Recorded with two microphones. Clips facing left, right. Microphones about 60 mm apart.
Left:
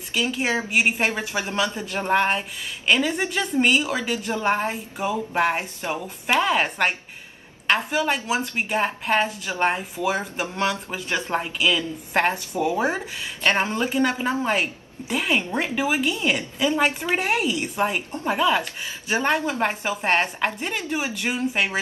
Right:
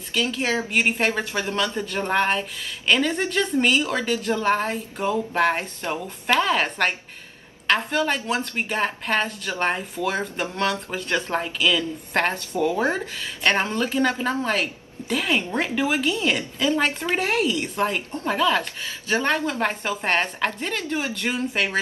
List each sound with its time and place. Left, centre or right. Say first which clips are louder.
0.1 s speech: even; centre